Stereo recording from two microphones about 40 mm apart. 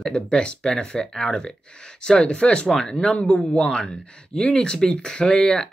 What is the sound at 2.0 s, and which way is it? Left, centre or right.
Speech, left.